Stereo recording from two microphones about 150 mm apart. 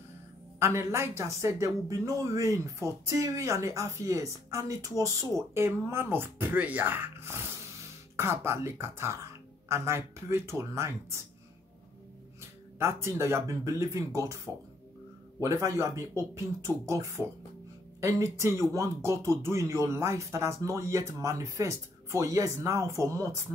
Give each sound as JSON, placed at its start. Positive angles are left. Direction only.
{"t": 0.6, "sound": "speech", "side_deg": -20}
{"t": 12.4, "sound": "speech", "side_deg": -15}